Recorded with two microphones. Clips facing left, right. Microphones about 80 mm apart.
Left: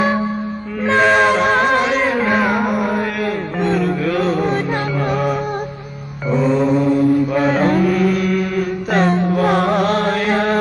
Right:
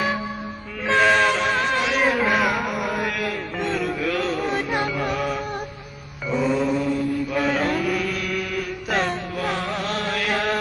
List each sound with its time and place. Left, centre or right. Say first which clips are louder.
0.8 s music: left 4 dB; centre
1.2 s a capella: left 7 dB; left
2.0 s music: left 4 dB; centre
2.5 s music: left 7 dB; left
2.8 s mantra: left 6 dB; centre
3.6 s music: left 7 dB; centre
6.3 s mantra: left 6 dB; centre
6.7 s mantra: left 9 dB; left
8.9 s music: left 8 dB; centre
9.2 s music: left 11 dB; left
10.2 s chant: left 7 dB; left